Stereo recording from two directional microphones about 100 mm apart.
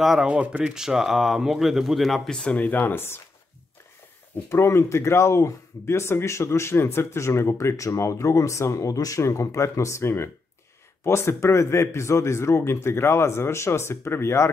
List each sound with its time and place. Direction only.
0.0 s speech: 5° right (ahead or behind); by 3.2 s 20° left (ahead or behind)
4.5 s speech: 25° left (ahead or behind)